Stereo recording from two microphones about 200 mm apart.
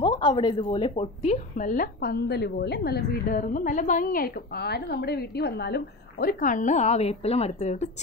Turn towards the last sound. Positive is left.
turn(degrees=35)  # may be behind; listen again after turning